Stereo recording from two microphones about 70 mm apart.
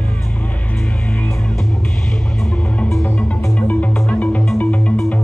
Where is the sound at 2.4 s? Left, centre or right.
Centre.